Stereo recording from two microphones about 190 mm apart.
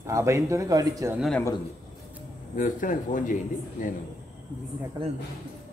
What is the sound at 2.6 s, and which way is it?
Speech, 45° left (ahead or behind).